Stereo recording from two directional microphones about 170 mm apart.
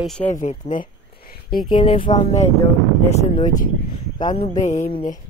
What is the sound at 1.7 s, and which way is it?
Speech, 30° left (ahead or behind).